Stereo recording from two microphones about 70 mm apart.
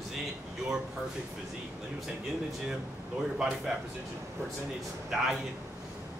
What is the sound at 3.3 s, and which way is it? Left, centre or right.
Speech, centre.